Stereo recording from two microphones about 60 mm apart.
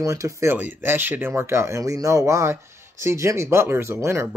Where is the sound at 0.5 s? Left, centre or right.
Right.